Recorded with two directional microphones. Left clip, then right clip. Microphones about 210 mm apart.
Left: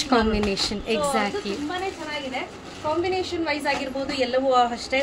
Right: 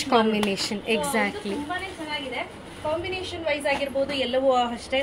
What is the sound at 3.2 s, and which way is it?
Speech, 15° left (ahead or behind).